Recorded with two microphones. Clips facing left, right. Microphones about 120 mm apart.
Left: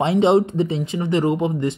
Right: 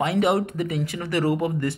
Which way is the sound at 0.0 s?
25° left (ahead or behind).